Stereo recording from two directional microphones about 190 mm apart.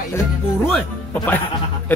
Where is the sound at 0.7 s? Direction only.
5° left (ahead or behind).